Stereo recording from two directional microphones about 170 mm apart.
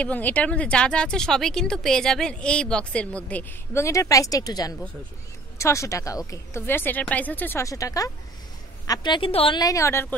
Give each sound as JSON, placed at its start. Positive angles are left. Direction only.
{"t": 0.0, "sound": "speech", "side_deg": 10}